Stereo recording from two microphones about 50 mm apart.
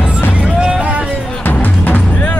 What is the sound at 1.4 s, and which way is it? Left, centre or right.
Music, left.